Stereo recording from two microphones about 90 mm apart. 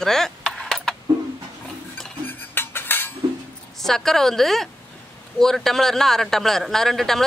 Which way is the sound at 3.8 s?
5° left (ahead or behind).